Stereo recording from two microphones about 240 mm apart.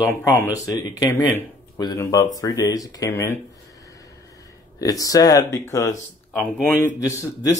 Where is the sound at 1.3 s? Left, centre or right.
Centre.